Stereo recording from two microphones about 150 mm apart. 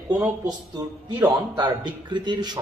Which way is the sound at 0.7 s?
25° right (ahead or behind).